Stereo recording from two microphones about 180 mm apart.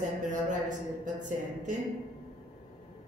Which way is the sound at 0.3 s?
45° right (ahead or behind).